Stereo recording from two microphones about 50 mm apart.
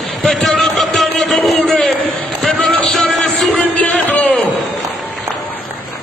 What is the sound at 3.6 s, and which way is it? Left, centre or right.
Music, left.